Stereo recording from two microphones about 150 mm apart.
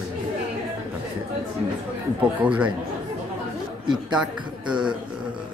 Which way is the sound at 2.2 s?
10° right (ahead or behind).